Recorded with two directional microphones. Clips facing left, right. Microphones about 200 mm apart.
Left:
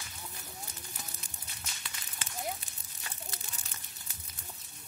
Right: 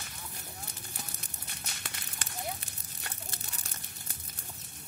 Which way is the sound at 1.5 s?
50° right (ahead or behind).